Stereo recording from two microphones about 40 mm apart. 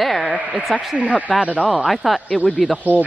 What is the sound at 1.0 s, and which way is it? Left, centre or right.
Speech, right.